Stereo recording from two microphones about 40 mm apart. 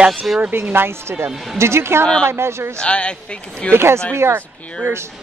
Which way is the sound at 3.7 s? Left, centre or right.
Right.